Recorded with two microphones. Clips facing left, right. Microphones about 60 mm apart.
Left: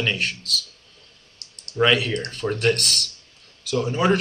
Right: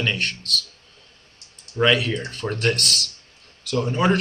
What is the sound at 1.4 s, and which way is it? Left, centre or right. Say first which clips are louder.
Clicking: left 3 dB; left.